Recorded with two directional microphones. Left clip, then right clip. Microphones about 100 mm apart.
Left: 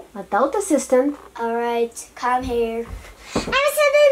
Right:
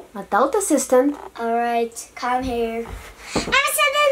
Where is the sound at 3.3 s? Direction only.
15° right (ahead or behind).